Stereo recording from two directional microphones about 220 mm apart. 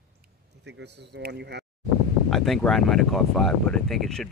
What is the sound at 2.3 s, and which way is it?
Speech, centre (ahead or behind).